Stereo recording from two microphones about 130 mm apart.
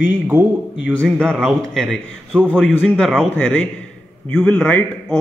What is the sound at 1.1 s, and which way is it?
A man's voice, 5° left (ahead or behind).